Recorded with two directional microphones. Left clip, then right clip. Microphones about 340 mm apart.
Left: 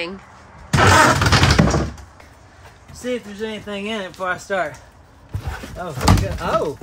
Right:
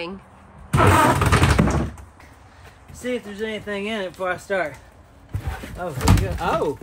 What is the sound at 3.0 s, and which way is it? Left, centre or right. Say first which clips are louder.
Speech: left 1 dB; centre.